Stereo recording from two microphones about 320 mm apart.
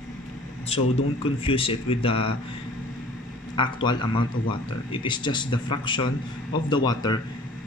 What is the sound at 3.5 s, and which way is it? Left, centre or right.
Speech, centre.